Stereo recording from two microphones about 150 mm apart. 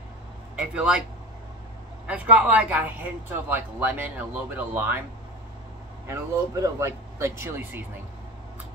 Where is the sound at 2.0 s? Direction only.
10° right (ahead or behind).